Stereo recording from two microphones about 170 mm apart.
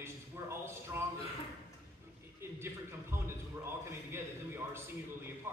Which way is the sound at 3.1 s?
15° right (ahead or behind).